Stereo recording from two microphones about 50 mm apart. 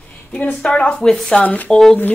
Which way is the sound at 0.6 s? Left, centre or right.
Left.